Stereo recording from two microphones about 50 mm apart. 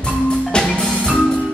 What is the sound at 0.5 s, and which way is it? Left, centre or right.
Music, centre.